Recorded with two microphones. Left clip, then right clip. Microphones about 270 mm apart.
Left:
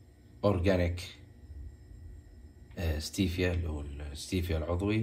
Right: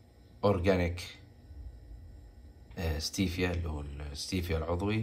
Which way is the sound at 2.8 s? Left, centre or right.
Centre.